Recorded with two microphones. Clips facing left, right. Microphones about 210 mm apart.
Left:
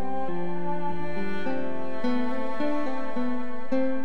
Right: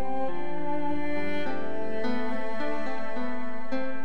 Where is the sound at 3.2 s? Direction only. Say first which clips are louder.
Left 4 dB; 25° left (ahead or behind).